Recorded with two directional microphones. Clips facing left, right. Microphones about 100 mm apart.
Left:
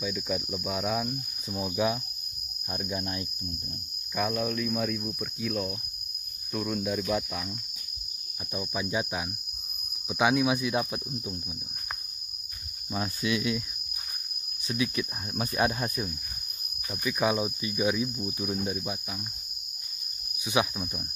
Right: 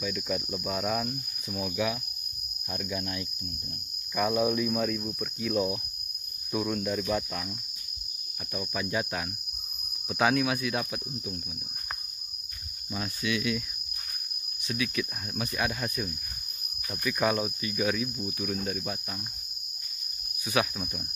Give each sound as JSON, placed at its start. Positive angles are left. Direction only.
{"t": 0.0, "sound": "speech", "side_deg": 5}
{"t": 1.5, "sound": "speech", "side_deg": 20}
{"t": 4.1, "sound": "speech", "side_deg": 0}
{"t": 8.5, "sound": "cricket", "side_deg": 15}
{"t": 12.9, "sound": "speech", "side_deg": 30}
{"t": 14.7, "sound": "speech", "side_deg": 25}
{"t": 16.9, "sound": "cricket", "side_deg": 10}
{"t": 20.4, "sound": "speech", "side_deg": 20}